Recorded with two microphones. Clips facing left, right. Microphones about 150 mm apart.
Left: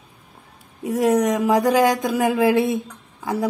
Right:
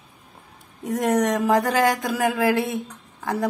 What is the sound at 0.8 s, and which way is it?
Speech, 10° left (ahead or behind).